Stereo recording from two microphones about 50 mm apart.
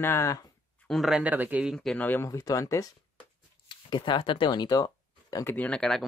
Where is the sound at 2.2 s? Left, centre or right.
Left.